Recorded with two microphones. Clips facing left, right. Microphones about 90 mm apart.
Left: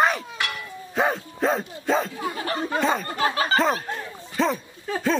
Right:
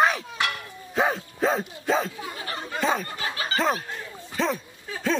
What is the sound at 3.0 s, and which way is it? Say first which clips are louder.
Speech: left 7 dB; 50° left (ahead or behind).